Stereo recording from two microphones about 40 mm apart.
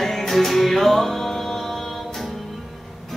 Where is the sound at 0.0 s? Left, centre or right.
Centre.